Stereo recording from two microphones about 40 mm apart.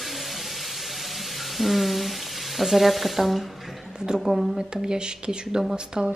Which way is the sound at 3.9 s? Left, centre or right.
Centre.